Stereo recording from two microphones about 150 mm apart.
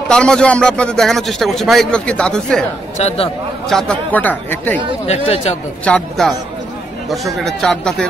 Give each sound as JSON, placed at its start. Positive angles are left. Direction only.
{"t": 0.1, "sound": "a man's voice", "side_deg": 5}
{"t": 3.0, "sound": "speech", "side_deg": 45}
{"t": 3.6, "sound": "speech", "side_deg": 5}
{"t": 5.0, "sound": "speech", "side_deg": 45}
{"t": 5.9, "sound": "a man's voice", "side_deg": 5}
{"t": 7.3, "sound": "a man's voice", "side_deg": 0}